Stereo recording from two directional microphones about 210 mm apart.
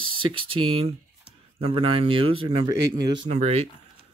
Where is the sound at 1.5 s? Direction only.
25° right (ahead or behind).